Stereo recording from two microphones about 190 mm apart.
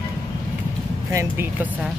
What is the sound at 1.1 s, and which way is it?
Speech, 15° right (ahead or behind).